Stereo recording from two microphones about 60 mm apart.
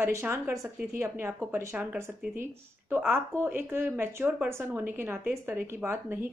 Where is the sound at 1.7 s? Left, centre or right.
Right.